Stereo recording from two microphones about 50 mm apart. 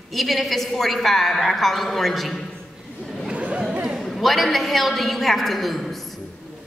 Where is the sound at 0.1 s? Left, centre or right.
Centre.